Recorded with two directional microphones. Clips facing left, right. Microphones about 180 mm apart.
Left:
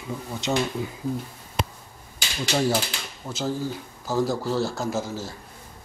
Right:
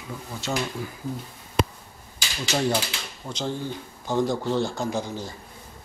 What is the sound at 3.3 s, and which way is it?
A man's voice, 5° left (ahead or behind).